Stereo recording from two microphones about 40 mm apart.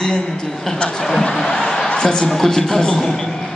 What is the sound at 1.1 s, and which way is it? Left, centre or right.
Speech, centre.